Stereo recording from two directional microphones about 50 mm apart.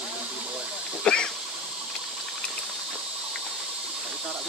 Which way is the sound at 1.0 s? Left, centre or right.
Centre.